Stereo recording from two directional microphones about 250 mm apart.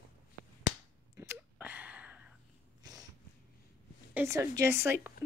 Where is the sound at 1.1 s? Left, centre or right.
Centre.